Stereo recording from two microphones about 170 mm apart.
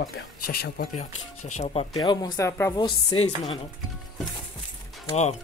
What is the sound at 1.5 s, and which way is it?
Speech, 45° left (ahead or behind).